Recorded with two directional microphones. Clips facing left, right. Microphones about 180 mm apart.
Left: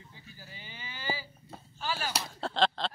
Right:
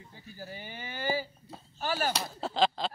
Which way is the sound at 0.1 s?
45° right (ahead or behind).